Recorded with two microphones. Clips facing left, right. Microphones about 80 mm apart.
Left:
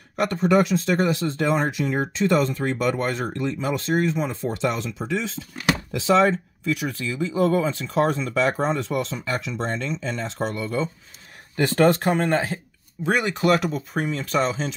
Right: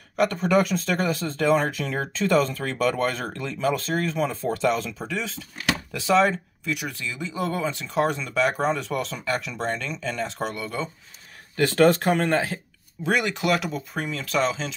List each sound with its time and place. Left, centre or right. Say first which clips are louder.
0.3 s speech: left 7 dB; left
12.1 s speech: left 1 dB; left
13.3 s speech: left 4 dB; left